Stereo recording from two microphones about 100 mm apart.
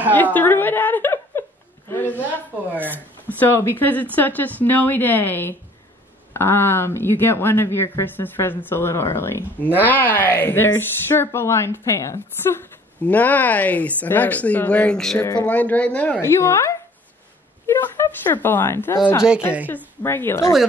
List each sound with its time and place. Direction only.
0.1 s chuckle: 15° left (ahead or behind)
1.9 s a sound: 20° left (ahead or behind)
3.3 s a woman's voice: 20° left (ahead or behind)
13.0 s a woman's voice: 15° left (ahead or behind)
20.0 s speech: 25° left (ahead or behind)